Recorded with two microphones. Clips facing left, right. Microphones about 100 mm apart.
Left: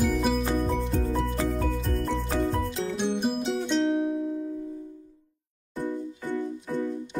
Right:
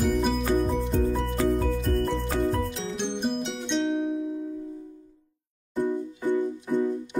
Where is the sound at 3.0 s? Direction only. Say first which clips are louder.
Left 1 dB; 5° left (ahead or behind).